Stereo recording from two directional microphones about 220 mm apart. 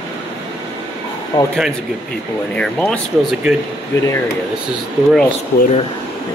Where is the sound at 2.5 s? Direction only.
5° left (ahead or behind).